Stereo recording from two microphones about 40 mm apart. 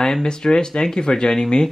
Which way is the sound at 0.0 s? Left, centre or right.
Centre.